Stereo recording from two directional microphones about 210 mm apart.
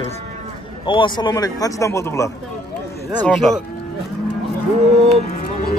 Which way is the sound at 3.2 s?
Centre (ahead or behind).